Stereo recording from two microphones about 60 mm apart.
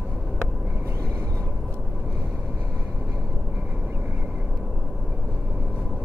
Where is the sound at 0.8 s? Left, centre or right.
Right.